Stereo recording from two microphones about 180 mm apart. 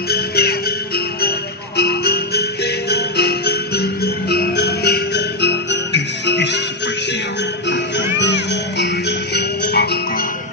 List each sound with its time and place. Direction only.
0.1 s music: 60° left (ahead or behind)
7.6 s music: 75° left (ahead or behind)